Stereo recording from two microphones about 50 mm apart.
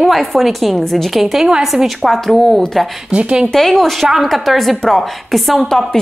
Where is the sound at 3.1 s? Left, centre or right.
Centre.